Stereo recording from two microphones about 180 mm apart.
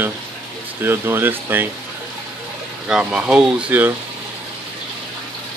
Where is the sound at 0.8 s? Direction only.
10° right (ahead or behind).